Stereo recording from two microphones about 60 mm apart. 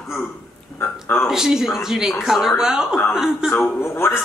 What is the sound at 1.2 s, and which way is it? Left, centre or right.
A woman's voice, centre.